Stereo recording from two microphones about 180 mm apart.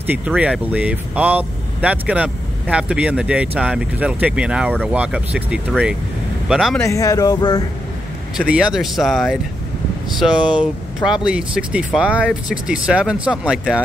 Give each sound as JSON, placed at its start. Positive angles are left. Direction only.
{"t": 0.0, "sound": "speech", "side_deg": -10}
{"t": 6.8, "sound": "speech", "side_deg": 20}
{"t": 8.4, "sound": "speech", "side_deg": -5}